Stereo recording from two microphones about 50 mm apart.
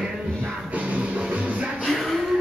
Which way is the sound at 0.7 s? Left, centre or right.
Right.